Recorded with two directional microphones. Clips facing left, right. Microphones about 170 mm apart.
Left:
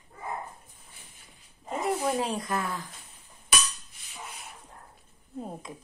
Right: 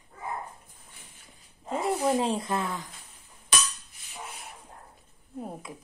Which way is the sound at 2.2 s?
25° right (ahead or behind).